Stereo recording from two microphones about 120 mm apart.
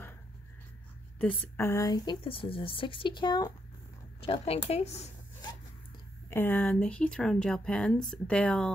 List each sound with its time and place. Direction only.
1.6 s speech: 25° left (ahead or behind)
2.2 s speech: 50° left (ahead or behind)
4.2 s a woman's voice: 50° left (ahead or behind)
6.3 s speech: 15° left (ahead or behind)